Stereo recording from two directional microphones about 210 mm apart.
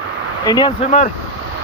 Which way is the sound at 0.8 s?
30° left (ahead or behind).